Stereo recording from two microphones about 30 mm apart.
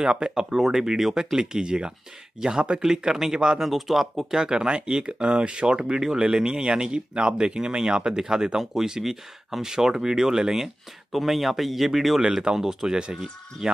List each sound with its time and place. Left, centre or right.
0.0 s speech: right
0.7 s speech: centre
3.6 s speech: centre
4.4 s speech: right
11.1 s speech: centre
12.4 s speech: centre